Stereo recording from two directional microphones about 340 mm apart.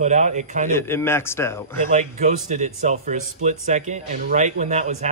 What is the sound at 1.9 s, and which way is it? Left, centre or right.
Speech, right.